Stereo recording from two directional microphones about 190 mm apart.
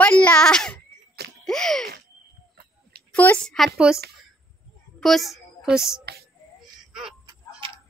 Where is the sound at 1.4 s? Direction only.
Centre (ahead or behind).